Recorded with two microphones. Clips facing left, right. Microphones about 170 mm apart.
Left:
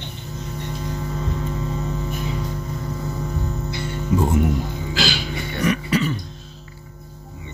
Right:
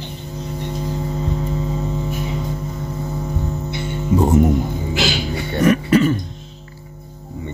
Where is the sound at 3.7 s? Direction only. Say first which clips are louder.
Right 3 dB; 20° right (ahead or behind).